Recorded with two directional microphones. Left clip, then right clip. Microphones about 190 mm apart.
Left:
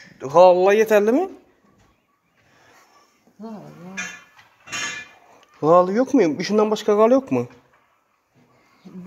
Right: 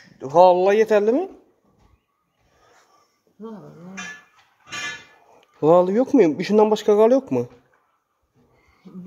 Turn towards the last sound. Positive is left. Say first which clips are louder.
# even
turn(degrees=-15)  # may be behind; listen again after turning